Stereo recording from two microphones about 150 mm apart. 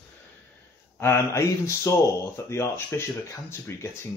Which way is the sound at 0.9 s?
15° left (ahead or behind).